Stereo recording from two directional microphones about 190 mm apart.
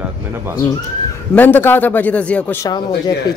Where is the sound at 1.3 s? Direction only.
10° left (ahead or behind).